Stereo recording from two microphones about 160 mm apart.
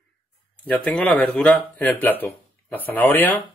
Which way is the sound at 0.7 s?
10° left (ahead or behind).